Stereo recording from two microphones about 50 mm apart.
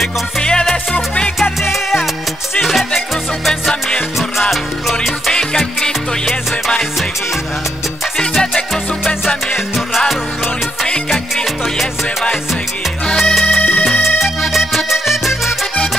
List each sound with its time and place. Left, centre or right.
0.4 s music: centre
1.6 s music: centre
4.2 s music: centre
5.3 s music: centre
8.2 s music: centre
9.8 s music: centre
13.2 s music: centre
13.6 s music: left
14.0 s music: centre